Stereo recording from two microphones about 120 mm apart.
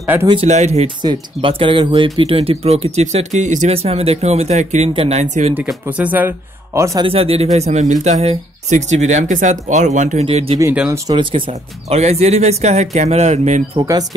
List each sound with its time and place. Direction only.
0.0 s speech: 20° right (ahead or behind)
0.5 s speech: 65° right (ahead or behind)
0.8 s speech: 45° right (ahead or behind); by 3.7 s 85° right
3.7 s speech: 55° right (ahead or behind); by 5.5 s 70° right (ahead or behind)
5.9 s speech: 15° right (ahead or behind)
7.0 s speech: 55° right (ahead or behind); by 10.2 s 85° right
10.2 s speech: 55° right (ahead or behind)
12.0 s speech: 65° right (ahead or behind)
13.7 s speech: 30° right (ahead or behind)